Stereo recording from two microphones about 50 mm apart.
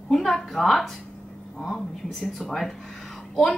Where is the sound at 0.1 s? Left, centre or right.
Centre.